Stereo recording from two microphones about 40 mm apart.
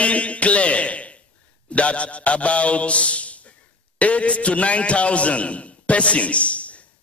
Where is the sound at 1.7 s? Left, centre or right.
Left.